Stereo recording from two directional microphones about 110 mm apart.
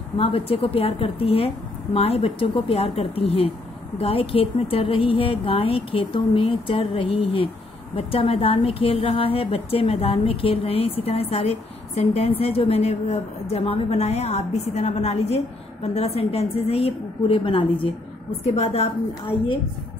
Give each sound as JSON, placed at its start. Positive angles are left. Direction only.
{"t": 0.2, "sound": "a woman's voice", "side_deg": 60}
{"t": 18.4, "sound": "a woman's voice", "side_deg": 70}